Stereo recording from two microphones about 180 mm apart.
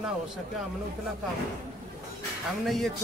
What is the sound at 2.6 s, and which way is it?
Speech, centre (ahead or behind).